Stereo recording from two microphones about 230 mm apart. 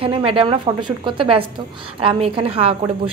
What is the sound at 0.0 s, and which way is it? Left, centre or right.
A woman's voice, right.